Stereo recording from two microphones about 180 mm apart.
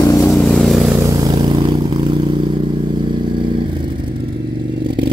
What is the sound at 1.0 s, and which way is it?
Vehicle, 20° right (ahead or behind).